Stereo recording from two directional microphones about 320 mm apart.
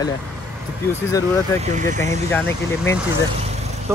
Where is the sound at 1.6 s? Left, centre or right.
Right.